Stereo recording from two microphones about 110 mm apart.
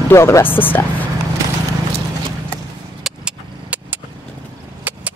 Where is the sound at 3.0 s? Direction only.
10° right (ahead or behind).